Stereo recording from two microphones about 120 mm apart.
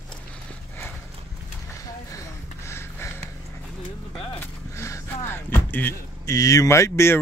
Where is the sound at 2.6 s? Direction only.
20° left (ahead or behind).